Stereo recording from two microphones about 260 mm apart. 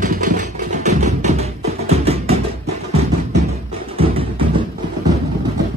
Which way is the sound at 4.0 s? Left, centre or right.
Right.